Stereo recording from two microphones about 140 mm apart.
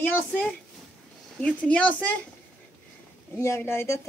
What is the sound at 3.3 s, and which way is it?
Speech, 15° left (ahead or behind).